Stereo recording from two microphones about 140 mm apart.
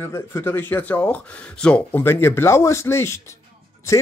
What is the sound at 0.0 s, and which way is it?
Speech, 20° left (ahead or behind).